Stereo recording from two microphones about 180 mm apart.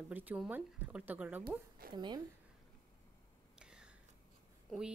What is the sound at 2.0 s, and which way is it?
Speech, 25° right (ahead or behind).